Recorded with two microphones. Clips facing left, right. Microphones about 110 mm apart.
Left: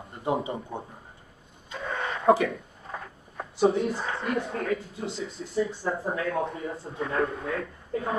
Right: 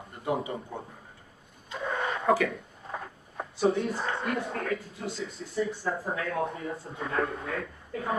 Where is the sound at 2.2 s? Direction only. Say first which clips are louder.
Left 4 dB; 25° left (ahead or behind).